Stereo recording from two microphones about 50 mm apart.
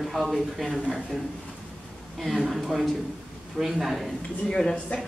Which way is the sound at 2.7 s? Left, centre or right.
Centre.